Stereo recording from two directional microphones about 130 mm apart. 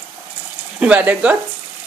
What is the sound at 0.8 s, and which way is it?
Speech, 10° right (ahead or behind).